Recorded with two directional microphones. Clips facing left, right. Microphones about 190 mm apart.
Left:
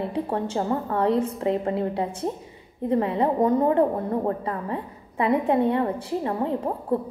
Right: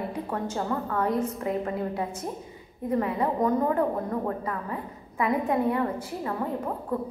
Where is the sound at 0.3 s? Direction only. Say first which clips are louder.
Left 3 dB; 30° left (ahead or behind).